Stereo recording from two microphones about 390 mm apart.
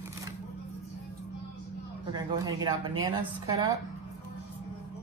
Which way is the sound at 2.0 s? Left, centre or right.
Centre.